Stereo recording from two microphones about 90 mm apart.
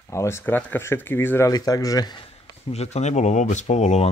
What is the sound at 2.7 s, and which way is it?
Speech, 90° left.